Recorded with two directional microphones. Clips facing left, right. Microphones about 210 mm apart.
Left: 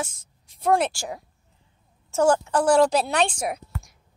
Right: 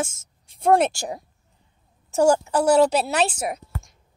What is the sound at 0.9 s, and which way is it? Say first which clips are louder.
A woman's voice: right 3 dB; 20° right (ahead or behind).